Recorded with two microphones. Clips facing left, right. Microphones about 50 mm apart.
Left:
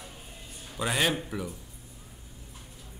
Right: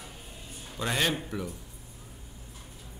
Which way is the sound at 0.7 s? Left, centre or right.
Centre.